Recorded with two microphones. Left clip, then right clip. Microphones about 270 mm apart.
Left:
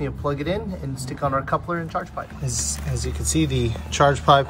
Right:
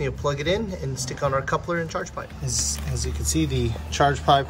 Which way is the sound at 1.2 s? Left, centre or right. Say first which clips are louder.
Left 1 dB; right.